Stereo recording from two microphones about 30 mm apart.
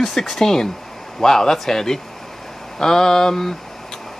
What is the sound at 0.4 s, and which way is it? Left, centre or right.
Speech, centre.